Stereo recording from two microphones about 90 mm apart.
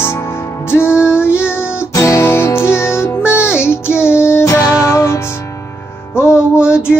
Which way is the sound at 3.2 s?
10° right (ahead or behind).